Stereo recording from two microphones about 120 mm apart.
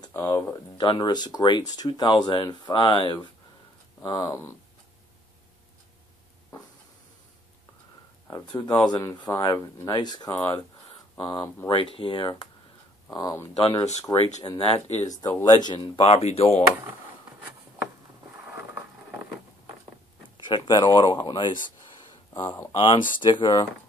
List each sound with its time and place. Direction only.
0.1 s speech: 20° left (ahead or behind)
0.7 s speech: 40° left (ahead or behind)
8.5 s speech: 35° left (ahead or behind)
11.7 s speech: 50° left (ahead or behind)
13.1 s speech: 30° left (ahead or behind)
14.5 s speech: 55° left (ahead or behind)
15.0 s speech: 30° left (ahead or behind)
16.1 s speech: 60° left (ahead or behind)
20.3 s speech: 40° left (ahead or behind)
22.0 s a sound: 45° left (ahead or behind)
22.7 s speech: 45° left (ahead or behind)